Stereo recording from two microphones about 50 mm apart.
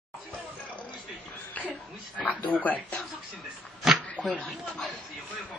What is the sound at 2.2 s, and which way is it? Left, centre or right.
Speech, left.